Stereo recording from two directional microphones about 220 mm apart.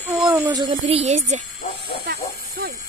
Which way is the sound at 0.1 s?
5° right (ahead or behind).